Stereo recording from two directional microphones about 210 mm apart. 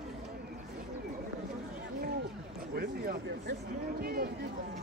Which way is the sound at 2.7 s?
45° right (ahead or behind).